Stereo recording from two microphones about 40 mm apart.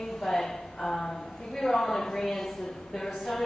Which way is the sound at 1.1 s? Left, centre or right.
Left.